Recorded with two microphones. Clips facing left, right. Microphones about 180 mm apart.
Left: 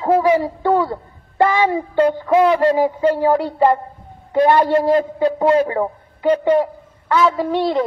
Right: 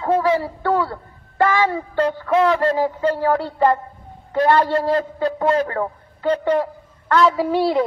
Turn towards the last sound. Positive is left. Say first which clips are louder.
# even
turn(degrees=-5)  # may be behind; listen again after turning